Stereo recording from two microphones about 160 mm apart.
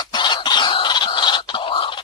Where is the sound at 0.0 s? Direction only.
25° left (ahead or behind).